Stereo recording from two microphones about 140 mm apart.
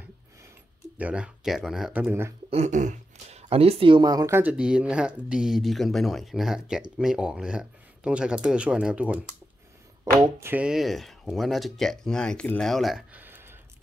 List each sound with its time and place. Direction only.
0.9 s speech: 10° right (ahead or behind)
2.5 s speech: 55° right (ahead or behind); by 4.4 s 25° right (ahead or behind)
4.4 s speech: 5° right (ahead or behind)
10.1 s speech: 25° right (ahead or behind)
10.4 s speech: 10° right (ahead or behind)
13.1 s a sound: 15° right (ahead or behind)